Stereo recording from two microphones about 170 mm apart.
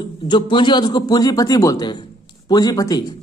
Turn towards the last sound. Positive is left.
turn(degrees=20)  # may be behind; listen again after turning